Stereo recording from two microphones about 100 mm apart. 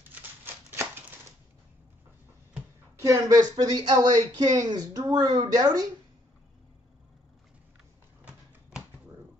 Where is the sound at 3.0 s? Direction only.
35° right (ahead or behind).